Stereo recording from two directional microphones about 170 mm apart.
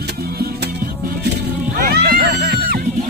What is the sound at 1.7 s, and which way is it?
Music, 60° right (ahead or behind).